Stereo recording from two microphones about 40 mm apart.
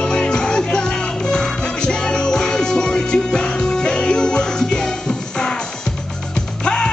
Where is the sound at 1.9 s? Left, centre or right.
Left.